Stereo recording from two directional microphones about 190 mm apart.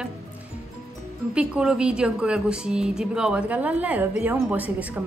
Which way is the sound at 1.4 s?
5° right (ahead or behind).